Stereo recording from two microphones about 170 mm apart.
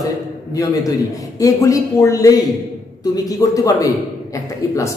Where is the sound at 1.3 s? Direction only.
20° left (ahead or behind).